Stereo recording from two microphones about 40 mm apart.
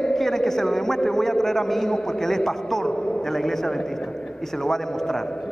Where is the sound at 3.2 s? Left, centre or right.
Centre.